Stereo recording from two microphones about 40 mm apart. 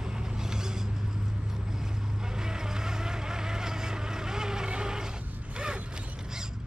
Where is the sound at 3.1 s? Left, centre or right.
Centre.